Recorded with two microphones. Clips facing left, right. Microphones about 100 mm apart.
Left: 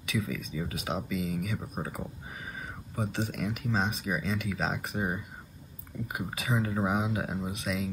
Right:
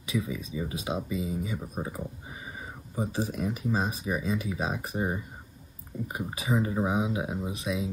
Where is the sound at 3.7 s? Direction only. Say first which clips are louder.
Even; 10° right (ahead or behind).